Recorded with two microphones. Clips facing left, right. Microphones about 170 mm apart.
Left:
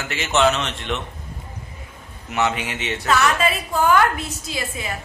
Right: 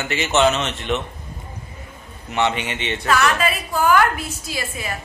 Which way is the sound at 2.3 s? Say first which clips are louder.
Right 1 dB; 5° left (ahead or behind).